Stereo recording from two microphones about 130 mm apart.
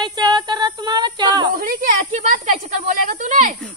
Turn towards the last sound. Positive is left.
turn(degrees=-75)  # may be behind; listen again after turning